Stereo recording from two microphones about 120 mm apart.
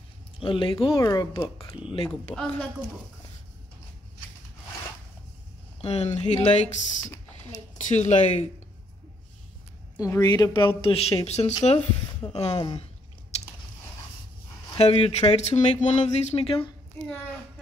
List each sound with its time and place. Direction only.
0.4 s speech: 45° left (ahead or behind)
1.0 s speech: 30° left (ahead or behind)
2.0 s a woman's voice: 5° left (ahead or behind)
5.8 s speech: 60° left (ahead or behind)
7.7 s speech: 75° left (ahead or behind)
9.9 s speech: 30° left (ahead or behind); by 12.5 s 55° left (ahead or behind)
12.5 s speech: 40° left (ahead or behind)
14.8 s speech: 55° left (ahead or behind)